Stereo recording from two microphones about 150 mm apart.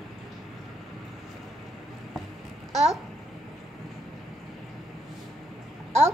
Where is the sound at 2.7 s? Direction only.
45° right (ahead or behind).